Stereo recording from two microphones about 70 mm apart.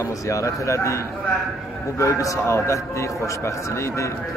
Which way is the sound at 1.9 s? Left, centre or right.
Left.